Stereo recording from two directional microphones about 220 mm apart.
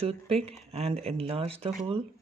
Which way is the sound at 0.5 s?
25° right (ahead or behind).